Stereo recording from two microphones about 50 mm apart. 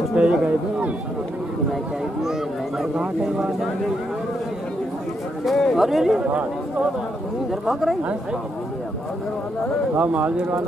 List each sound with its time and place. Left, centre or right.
0.1 s speech: right
3.3 s speech: centre
5.4 s speech: centre
6.2 s speech: right
7.6 s speech: centre
9.9 s speech: right